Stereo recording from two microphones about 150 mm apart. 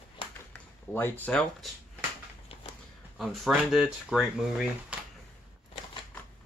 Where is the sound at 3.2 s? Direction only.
Centre (ahead or behind).